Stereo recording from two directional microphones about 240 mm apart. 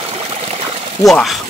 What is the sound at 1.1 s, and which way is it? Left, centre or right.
Speech, centre.